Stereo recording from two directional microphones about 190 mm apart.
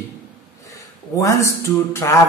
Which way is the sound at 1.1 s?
15° left (ahead or behind).